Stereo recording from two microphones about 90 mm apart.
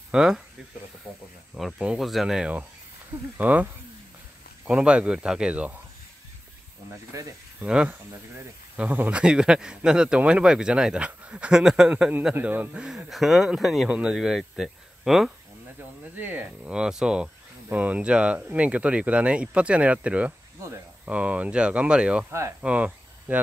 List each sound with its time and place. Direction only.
0.1 s speech: 5° right (ahead or behind)
1.8 s speech: 10° right (ahead or behind)
3.3 s a man's voice: 20° right (ahead or behind)
4.6 s speech: 15° right (ahead or behind)
7.1 s speech: 40° right (ahead or behind)
7.6 s speech: 10° right (ahead or behind)
9.2 s a man's voice: 10° right (ahead or behind)
12.7 s speech: 5° right (ahead or behind)
13.8 s speech: 15° right (ahead or behind)
16.2 s speech: 20° right (ahead or behind)
22.6 s cricket: 15° right (ahead or behind)